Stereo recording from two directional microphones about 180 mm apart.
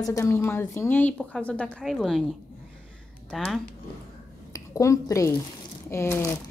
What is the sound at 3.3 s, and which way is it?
Speech, centre (ahead or behind).